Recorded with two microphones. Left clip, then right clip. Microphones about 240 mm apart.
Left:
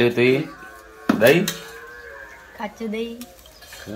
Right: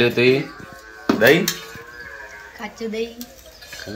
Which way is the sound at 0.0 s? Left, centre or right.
Centre.